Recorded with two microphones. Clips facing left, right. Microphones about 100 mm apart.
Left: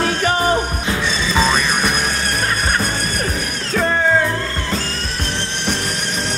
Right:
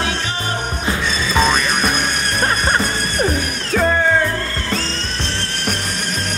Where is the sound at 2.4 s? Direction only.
30° right (ahead or behind).